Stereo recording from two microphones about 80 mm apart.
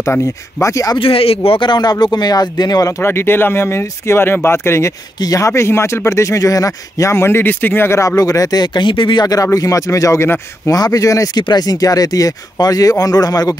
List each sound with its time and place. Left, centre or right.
0.0 s speech: left
1.5 s speech: left
3.0 s speech: left
5.2 s speech: left
10.7 s speech: left
11.4 s speech: left